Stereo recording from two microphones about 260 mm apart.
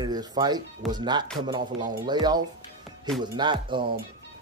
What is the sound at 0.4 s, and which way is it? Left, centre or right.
Speech, centre.